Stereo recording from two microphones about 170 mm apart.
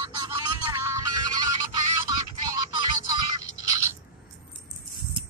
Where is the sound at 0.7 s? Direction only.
15° right (ahead or behind).